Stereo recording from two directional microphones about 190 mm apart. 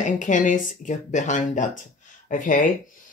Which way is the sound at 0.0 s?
40° left (ahead or behind).